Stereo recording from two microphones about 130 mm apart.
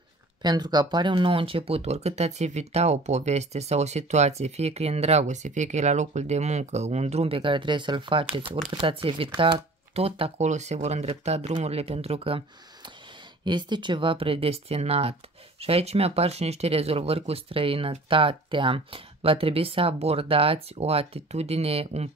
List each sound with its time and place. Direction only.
0.4 s speech: 35° right (ahead or behind)
13.5 s speech: 35° right (ahead or behind); by 22.1 s 50° right (ahead or behind)